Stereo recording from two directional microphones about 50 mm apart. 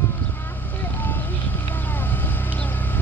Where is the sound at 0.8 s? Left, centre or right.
Left.